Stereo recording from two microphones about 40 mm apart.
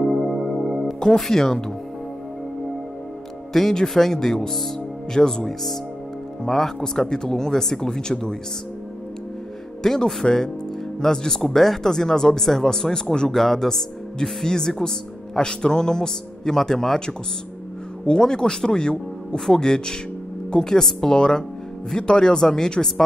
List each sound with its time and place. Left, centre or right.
0.0 s music: centre
0.9 s speech: centre
3.5 s speech: centre
9.8 s speech: centre
18.0 s speech: centre